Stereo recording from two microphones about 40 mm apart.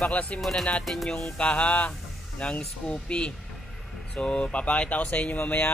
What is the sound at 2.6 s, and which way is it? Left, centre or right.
Speech, left.